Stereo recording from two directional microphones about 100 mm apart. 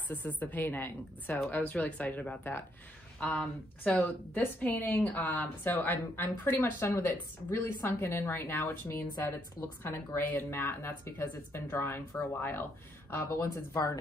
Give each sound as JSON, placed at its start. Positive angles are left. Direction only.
{"t": 0.1, "sound": "a woman's voice", "side_deg": 15}